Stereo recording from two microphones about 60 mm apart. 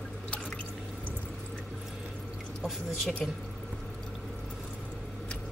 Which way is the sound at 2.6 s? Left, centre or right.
Centre.